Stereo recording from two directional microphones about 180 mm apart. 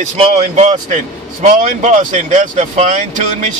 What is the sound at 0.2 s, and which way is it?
Speech, 40° right (ahead or behind).